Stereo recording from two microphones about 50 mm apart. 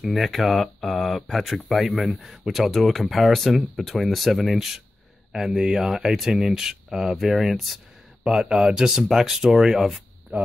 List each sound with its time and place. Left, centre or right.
0.0 s speech: centre
8.3 s speech: centre
10.3 s speech: right